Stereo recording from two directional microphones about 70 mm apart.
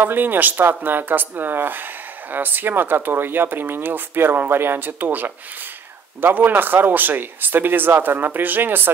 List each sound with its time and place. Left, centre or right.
0.0 s speech: right